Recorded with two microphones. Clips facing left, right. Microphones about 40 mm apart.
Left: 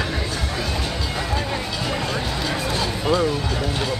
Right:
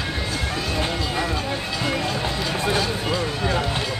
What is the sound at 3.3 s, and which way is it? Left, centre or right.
Music, right.